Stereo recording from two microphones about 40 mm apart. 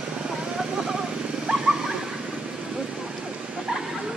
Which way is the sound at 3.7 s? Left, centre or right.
Centre.